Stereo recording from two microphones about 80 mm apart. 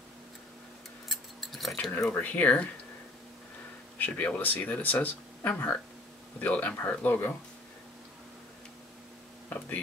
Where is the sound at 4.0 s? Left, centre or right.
Left.